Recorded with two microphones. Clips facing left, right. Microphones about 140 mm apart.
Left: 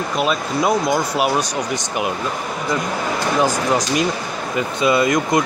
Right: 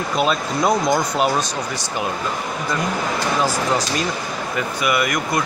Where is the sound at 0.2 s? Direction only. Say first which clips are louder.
Even; 5° left (ahead or behind).